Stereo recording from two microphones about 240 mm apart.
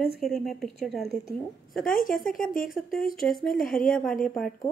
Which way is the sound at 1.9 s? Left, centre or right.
Left.